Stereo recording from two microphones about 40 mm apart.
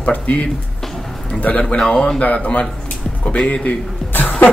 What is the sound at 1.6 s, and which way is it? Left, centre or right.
Speech, left.